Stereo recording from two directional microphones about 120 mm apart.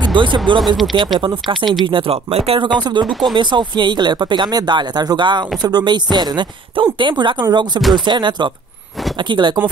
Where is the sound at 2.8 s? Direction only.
40° right (ahead or behind).